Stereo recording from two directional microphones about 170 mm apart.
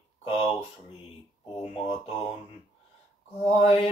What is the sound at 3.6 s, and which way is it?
Speech, 35° left (ahead or behind).